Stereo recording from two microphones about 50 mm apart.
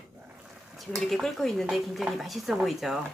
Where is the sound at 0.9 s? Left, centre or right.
Centre.